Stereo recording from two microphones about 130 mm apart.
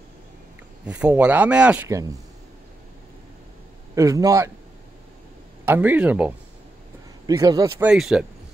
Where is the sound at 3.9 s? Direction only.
25° right (ahead or behind).